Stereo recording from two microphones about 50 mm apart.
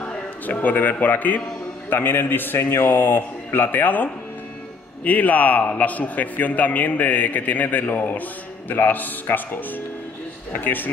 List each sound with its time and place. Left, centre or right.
0.0 s a man's voice: left